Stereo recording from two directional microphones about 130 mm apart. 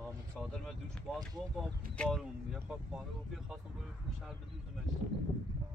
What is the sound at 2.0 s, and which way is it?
Speech, 5° left (ahead or behind).